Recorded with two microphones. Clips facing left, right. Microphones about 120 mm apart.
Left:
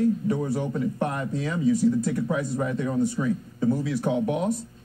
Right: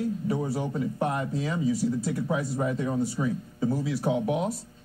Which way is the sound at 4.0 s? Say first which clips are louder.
Left 1 dB; 5° right (ahead or behind).